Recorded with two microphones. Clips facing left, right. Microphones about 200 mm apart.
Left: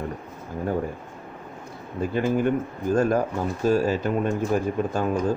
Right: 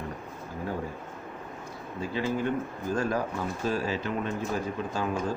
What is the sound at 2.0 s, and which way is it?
Speech, 55° left (ahead or behind).